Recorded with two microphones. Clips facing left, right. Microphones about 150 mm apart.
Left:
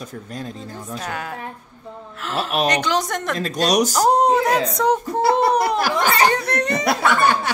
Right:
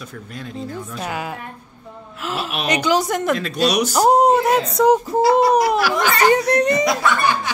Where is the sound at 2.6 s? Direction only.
5° right (ahead or behind).